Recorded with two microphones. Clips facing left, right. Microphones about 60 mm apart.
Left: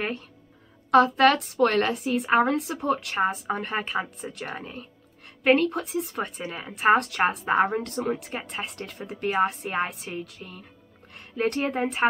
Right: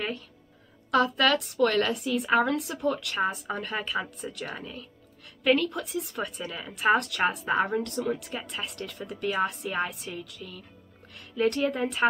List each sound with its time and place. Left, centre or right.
0.9 s a woman's voice: left